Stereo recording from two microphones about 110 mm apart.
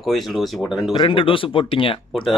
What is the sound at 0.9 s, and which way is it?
Speech, 55° left (ahead or behind).